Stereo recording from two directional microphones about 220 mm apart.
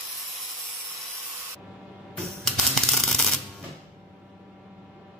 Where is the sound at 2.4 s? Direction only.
Centre (ahead or behind).